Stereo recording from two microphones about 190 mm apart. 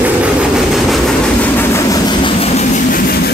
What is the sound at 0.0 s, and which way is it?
Train, 5° right (ahead or behind).